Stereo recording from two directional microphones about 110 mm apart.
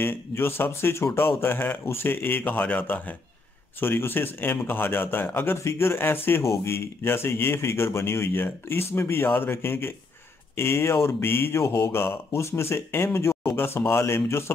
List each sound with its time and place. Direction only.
0.0 s speech: 20° left (ahead or behind)